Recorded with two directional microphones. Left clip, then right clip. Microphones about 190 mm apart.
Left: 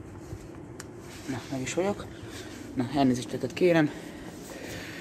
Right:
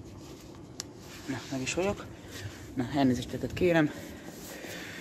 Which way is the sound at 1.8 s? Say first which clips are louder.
Left 4 dB; 15° right (ahead or behind).